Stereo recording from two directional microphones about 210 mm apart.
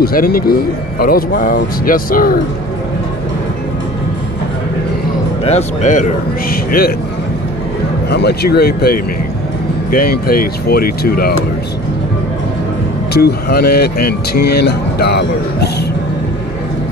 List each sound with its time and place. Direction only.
0.0 s speech: 45° left (ahead or behind)
5.4 s speech: 30° left (ahead or behind)
6.5 s speech: 45° left (ahead or behind)
8.1 s speech: 50° left (ahead or behind)
13.1 s speech: 50° left (ahead or behind)